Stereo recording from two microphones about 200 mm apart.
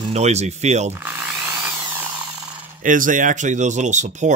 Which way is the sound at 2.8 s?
40° right (ahead or behind).